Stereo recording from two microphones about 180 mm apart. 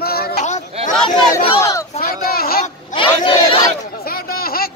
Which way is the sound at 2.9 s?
30° left (ahead or behind).